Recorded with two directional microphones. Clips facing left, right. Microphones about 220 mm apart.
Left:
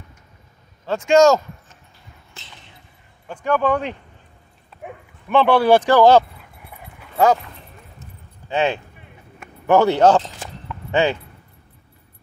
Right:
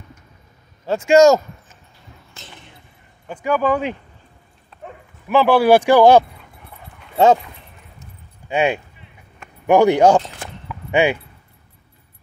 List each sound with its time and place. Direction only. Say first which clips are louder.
0.8 s speech: right 2 dB; 10° right (ahead or behind)
3.3 s speech: right 1 dB; 5° right (ahead or behind)
5.3 s speech: right 1 dB; 5° right (ahead or behind)
7.2 s speech: right 3 dB; 25° right (ahead or behind)
8.5 s speech: right 2 dB; 15° right (ahead or behind)
10.7 s keys jangling: right 2 dB; 15° right (ahead or behind)